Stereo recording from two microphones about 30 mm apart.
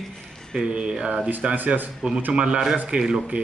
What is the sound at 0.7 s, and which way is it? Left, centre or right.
Speech, right.